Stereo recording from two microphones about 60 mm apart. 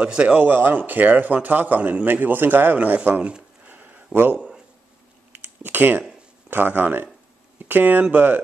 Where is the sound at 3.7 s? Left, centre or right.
Right.